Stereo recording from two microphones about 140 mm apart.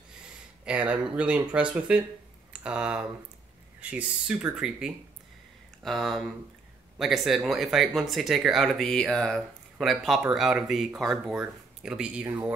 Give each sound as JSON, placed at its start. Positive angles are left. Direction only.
{"t": 0.7, "sound": "speech", "side_deg": -10}